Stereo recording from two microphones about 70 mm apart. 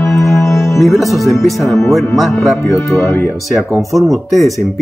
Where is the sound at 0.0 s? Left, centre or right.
Left.